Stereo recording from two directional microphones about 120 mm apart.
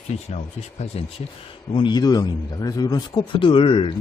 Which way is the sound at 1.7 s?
40° left (ahead or behind).